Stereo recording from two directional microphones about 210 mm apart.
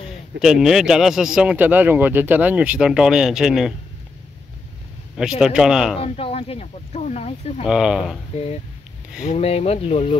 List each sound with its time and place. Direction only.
0.4 s speech: centre (ahead or behind)
5.1 s speech: 5° right (ahead or behind)
5.9 s speech: 25° left (ahead or behind)
7.6 s speech: 5° right (ahead or behind)
9.2 s speech: 30° left (ahead or behind)